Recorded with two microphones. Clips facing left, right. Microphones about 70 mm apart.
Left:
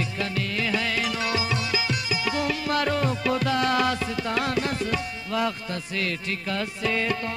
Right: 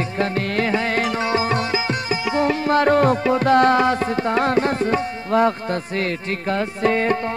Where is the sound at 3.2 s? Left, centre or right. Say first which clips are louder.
Right 6 dB; right.